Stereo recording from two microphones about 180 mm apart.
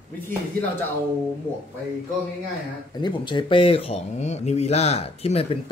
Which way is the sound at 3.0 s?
25° left (ahead or behind).